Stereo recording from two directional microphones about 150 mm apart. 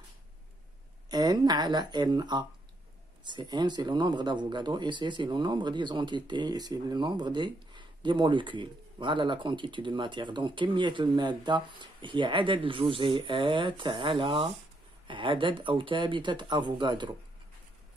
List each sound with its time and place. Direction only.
1.1 s speech: 30° right (ahead or behind)